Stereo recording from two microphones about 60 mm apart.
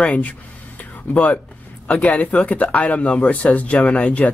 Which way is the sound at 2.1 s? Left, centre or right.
Left.